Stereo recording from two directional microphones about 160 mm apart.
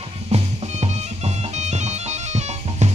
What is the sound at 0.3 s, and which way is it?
Music, 40° right (ahead or behind).